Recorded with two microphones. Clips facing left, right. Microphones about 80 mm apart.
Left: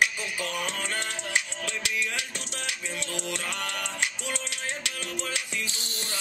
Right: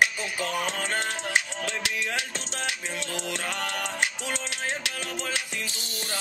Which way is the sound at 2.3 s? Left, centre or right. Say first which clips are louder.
Right 3 dB; right.